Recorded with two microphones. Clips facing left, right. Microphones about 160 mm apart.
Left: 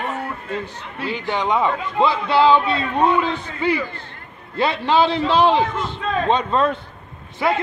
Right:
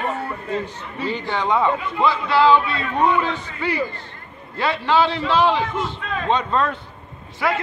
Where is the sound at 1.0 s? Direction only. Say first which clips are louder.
Left 1 dB; 10° left (ahead or behind).